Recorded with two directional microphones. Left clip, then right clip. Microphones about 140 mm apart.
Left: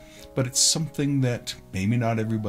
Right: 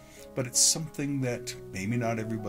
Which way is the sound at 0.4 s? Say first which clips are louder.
Left 4 dB; 45° right (ahead or behind).